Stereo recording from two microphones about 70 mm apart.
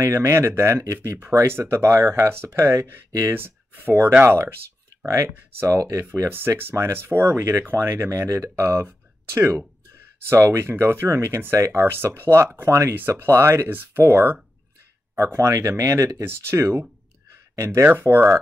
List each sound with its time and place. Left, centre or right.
0.0 s speech: right
5.0 s speech: right
8.1 s speech: right
16.3 s speech: right
17.8 s speech: right